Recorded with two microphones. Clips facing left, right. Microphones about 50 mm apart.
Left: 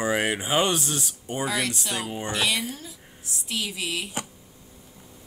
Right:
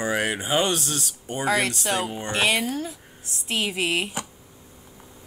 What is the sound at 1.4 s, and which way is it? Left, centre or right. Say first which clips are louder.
Speech: right 4 dB; right.